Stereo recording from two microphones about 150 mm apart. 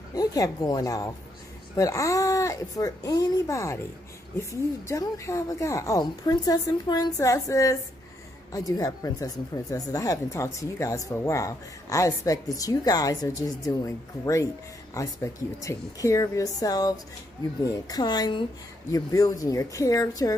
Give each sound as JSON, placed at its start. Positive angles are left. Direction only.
{"t": 0.1, "sound": "speech", "side_deg": 25}